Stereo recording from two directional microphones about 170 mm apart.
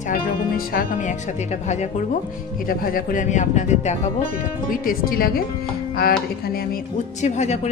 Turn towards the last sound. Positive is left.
turn(degrees=40)  # may be behind; listen again after turning